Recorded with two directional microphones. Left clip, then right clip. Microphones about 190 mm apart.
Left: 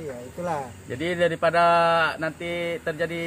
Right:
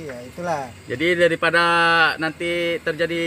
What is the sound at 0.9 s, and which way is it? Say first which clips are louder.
Speech: right 6 dB; 40° right (ahead or behind).